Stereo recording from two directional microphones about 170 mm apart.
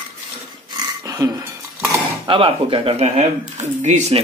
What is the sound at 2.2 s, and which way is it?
Speech, 30° right (ahead or behind).